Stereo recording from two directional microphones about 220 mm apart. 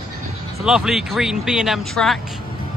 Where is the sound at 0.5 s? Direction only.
Centre (ahead or behind).